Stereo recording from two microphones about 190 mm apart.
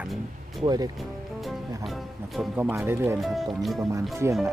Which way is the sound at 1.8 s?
Centre (ahead or behind).